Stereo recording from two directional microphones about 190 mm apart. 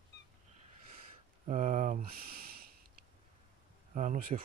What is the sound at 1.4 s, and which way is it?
Speech, 40° right (ahead or behind).